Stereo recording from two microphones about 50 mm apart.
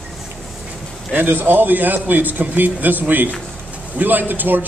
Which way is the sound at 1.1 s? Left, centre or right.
Right.